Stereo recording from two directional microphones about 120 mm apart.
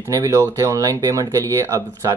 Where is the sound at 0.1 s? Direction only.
25° right (ahead or behind).